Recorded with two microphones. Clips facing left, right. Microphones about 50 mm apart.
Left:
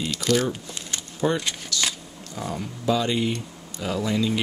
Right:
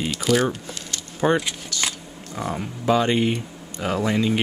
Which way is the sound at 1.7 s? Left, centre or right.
Right.